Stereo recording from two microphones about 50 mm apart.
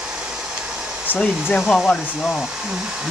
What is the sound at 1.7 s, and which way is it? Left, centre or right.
Speech, centre.